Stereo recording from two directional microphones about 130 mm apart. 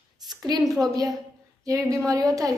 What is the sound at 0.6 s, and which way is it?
Speech, centre (ahead or behind).